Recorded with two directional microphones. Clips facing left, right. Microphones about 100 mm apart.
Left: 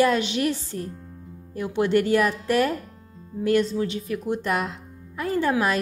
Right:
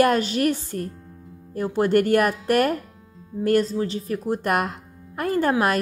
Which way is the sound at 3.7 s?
35° right (ahead or behind).